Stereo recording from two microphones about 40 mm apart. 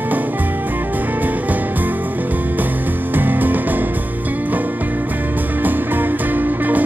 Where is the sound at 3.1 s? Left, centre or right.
Right.